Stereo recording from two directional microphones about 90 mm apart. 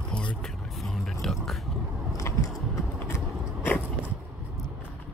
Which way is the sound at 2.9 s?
25° left (ahead or behind).